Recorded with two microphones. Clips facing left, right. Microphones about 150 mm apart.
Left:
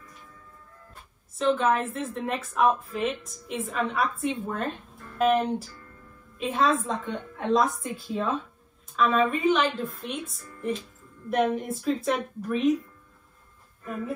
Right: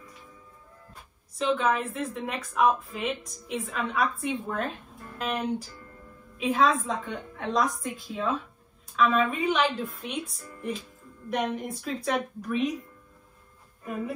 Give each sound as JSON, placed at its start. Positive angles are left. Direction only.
{"t": 1.3, "sound": "a woman's voice", "side_deg": 0}
{"t": 8.9, "sound": "a woman's voice", "side_deg": 0}